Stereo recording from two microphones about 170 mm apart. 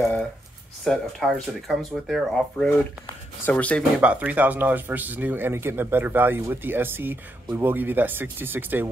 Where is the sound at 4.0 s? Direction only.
10° right (ahead or behind).